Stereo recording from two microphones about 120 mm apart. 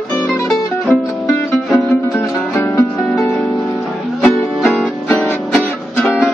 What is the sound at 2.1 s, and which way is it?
Music, 20° left (ahead or behind).